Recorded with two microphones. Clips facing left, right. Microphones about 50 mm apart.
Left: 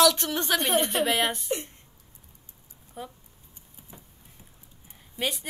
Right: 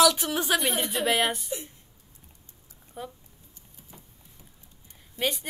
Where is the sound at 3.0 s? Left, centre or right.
Centre.